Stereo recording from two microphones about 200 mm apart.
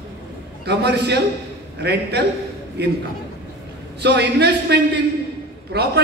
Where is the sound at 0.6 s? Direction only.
55° right (ahead or behind).